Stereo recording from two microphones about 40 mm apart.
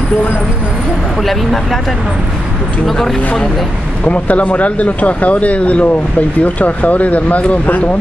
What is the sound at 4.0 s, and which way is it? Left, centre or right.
Speech, left.